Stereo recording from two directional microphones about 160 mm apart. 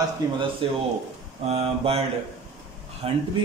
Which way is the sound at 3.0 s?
40° right (ahead or behind).